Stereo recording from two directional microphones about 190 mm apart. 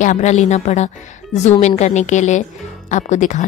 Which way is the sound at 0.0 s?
40° left (ahead or behind).